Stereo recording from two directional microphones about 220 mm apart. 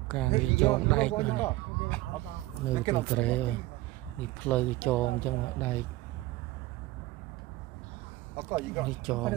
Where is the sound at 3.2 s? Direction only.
5° left (ahead or behind).